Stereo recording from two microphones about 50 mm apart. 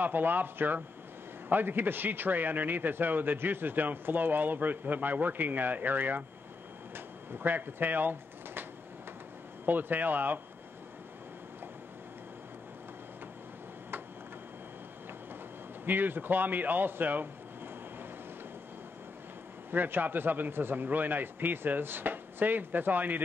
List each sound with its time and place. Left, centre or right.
0.0 s a man's voice: right
7.3 s speech: right
9.7 s a man's voice: right
15.8 s a man's voice: right
19.7 s a man's voice: right